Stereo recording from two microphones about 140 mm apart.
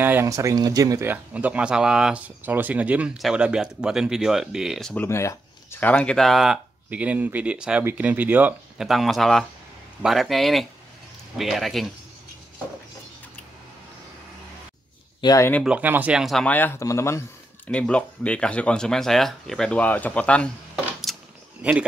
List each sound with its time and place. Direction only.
0.0 s speech: 15° right (ahead or behind)
4.9 s speech: 20° left (ahead or behind); by 8.8 s 10° right (ahead or behind)
8.8 s speech: centre (ahead or behind)
15.1 s speech: 30° left (ahead or behind)
15.6 s speech: 10° right (ahead or behind)
16.4 s speech: 15° left (ahead or behind)
17.6 s speech: 5° left (ahead or behind)
21.1 s a sound: centre (ahead or behind)
21.6 s speech: 5° right (ahead or behind)